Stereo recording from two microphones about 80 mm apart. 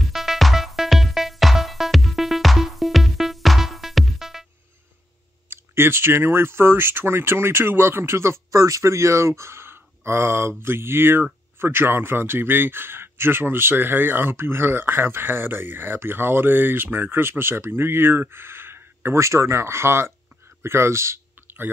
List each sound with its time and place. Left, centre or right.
0.0 s music: centre
5.5 s a man's voice: right
20.6 s a sound: right